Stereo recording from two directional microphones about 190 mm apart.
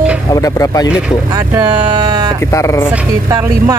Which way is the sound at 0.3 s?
20° left (ahead or behind).